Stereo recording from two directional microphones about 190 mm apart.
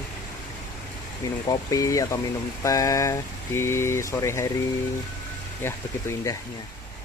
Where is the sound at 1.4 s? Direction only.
15° left (ahead or behind).